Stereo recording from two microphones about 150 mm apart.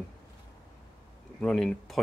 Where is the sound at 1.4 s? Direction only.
5° left (ahead or behind).